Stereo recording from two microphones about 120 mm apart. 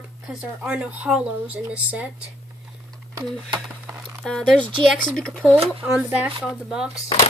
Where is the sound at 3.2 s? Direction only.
40° right (ahead or behind).